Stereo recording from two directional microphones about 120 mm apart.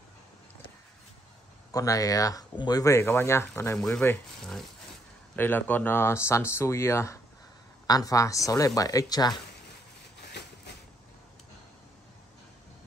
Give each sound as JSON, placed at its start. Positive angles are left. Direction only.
{"t": 1.7, "sound": "speech", "side_deg": 30}
{"t": 4.4, "sound": "speech", "side_deg": 5}
{"t": 5.3, "sound": "a woman's voice", "side_deg": 15}